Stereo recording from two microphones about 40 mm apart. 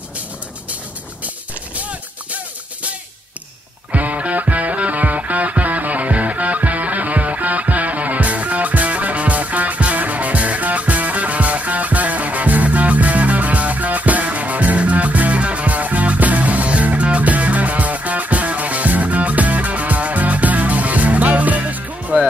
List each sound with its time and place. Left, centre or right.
1.8 s music: right